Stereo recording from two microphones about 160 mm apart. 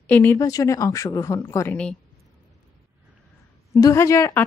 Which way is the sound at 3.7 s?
20° left (ahead or behind).